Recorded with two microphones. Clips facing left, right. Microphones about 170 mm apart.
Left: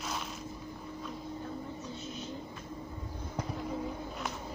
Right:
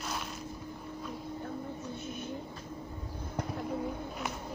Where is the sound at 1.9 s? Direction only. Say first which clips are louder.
Right 2 dB; 55° right (ahead or behind).